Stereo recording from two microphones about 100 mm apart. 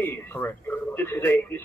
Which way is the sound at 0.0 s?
20° left (ahead or behind).